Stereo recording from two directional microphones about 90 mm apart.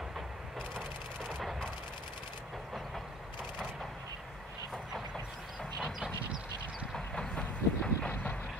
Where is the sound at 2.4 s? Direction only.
Centre (ahead or behind).